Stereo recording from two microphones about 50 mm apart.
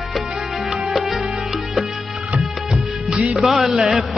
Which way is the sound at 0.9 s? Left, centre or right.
Centre.